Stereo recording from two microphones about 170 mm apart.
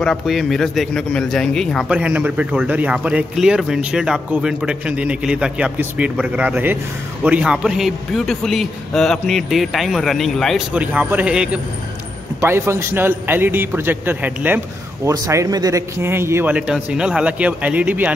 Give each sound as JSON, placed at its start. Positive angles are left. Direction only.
{"t": 0.0, "sound": "a man's voice", "side_deg": 0}